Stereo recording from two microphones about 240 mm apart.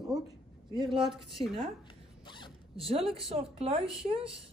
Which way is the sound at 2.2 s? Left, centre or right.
Centre.